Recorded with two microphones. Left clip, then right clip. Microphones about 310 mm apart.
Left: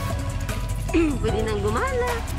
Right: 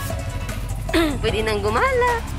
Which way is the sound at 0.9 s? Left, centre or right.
Centre.